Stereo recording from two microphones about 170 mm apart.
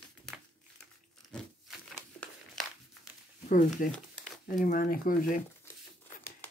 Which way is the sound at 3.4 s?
50° left (ahead or behind).